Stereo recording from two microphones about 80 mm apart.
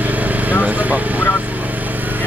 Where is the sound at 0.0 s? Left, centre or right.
Right.